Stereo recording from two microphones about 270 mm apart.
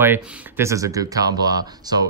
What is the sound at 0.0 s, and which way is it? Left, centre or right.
Speech, centre.